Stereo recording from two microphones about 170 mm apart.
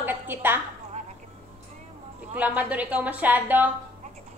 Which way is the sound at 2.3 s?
10° right (ahead or behind).